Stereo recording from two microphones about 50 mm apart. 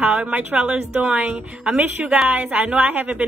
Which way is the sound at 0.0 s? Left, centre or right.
Right.